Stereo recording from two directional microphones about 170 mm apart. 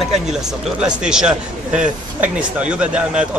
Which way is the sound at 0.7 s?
5° right (ahead or behind).